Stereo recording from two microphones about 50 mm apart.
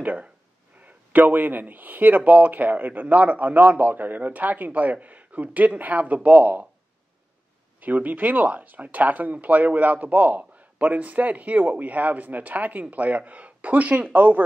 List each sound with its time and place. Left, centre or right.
0.0 s speech: right
7.8 s speech: right